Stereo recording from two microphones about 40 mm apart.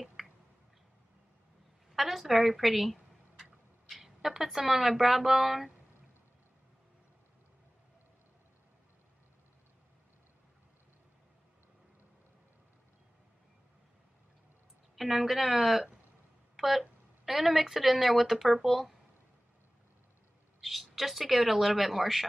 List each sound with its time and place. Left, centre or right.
0.2 s finger snapping: centre
1.9 s a sound: centre
3.8 s speech: centre
15.0 s speech: centre
16.5 s a sound: centre
17.2 s speech: centre
20.6 s speech: centre